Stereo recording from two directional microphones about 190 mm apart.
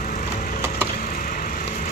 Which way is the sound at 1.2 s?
45° left (ahead or behind).